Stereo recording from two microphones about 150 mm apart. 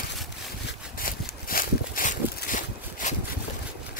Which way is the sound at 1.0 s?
75° left (ahead or behind).